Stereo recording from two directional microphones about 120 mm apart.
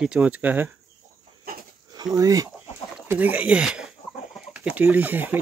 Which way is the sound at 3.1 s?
15° right (ahead or behind).